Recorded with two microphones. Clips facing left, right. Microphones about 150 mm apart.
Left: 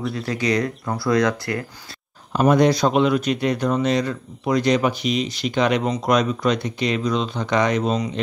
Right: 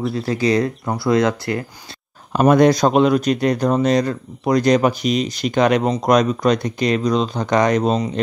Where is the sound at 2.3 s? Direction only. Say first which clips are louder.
Right 3 dB; 50° right (ahead or behind).